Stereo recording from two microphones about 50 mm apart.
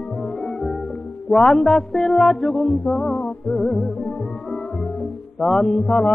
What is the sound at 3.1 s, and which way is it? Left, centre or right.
Mantra, centre.